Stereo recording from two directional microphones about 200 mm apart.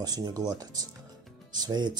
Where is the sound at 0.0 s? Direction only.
20° right (ahead or behind).